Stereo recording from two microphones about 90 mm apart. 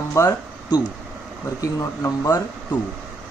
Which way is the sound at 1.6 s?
40° left (ahead or behind).